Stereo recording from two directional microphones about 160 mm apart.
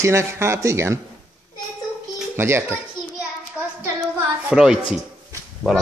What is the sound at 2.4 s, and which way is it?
Speech, 15° right (ahead or behind).